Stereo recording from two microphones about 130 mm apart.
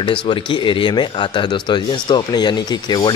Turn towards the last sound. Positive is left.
turn(degrees=35)  # may be behind; listen again after turning